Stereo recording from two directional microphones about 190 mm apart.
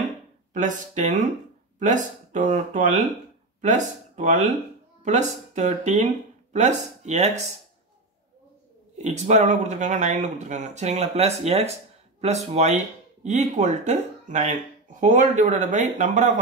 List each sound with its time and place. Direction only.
0.5 s speech: 40° right (ahead or behind)
8.9 s speech: 35° right (ahead or behind)